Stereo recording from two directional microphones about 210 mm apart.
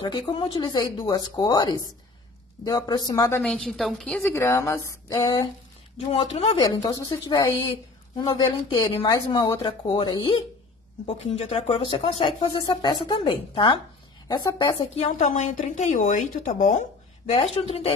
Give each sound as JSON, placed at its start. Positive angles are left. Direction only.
{"t": 0.0, "sound": "a woman's voice", "side_deg": 25}
{"t": 5.9, "sound": "speech", "side_deg": 30}
{"t": 6.6, "sound": "a woman's voice", "side_deg": 20}
{"t": 11.1, "sound": "a woman's voice", "side_deg": 30}
{"t": 15.0, "sound": "a woman's voice", "side_deg": 30}